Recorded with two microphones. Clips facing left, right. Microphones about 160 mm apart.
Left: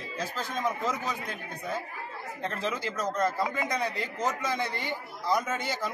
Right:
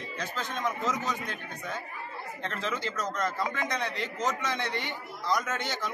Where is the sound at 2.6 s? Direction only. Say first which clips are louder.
Left 1 dB; 10° left (ahead or behind).